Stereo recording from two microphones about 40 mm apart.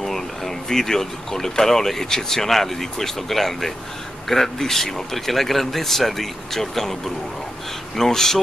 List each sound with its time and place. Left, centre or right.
0.0 s speech: centre